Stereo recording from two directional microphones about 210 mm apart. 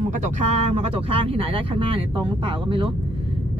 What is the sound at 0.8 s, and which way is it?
Speech, 25° right (ahead or behind).